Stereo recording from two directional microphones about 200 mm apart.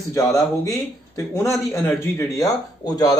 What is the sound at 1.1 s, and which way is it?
Speech, 15° left (ahead or behind).